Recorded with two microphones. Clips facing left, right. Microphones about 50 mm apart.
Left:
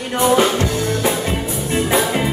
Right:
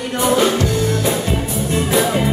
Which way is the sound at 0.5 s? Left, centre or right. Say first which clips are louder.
Right 1 dB; left.